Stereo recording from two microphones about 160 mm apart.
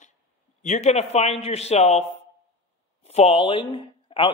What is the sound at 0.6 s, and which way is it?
A man's voice, 50° left (ahead or behind).